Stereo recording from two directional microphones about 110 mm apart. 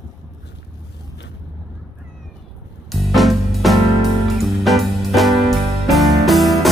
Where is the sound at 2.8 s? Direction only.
Centre (ahead or behind).